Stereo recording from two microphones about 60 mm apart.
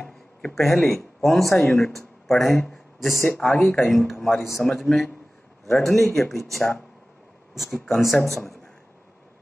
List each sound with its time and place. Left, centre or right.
0.0 s a sound: centre
0.6 s a man's voice: centre
7.5 s a man's voice: centre